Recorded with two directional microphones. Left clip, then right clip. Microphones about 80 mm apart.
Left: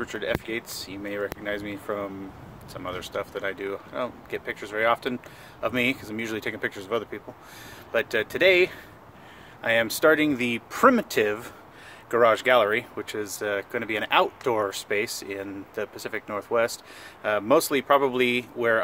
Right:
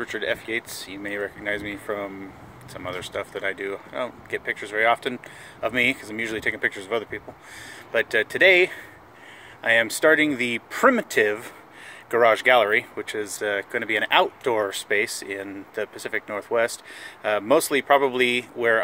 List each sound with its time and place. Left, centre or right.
0.0 s speech: centre